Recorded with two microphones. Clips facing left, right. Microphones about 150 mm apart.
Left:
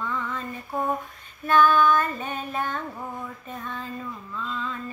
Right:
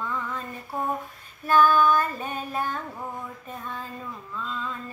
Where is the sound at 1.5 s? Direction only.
5° right (ahead or behind).